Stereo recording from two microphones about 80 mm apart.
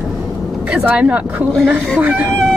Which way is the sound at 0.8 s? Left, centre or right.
Centre.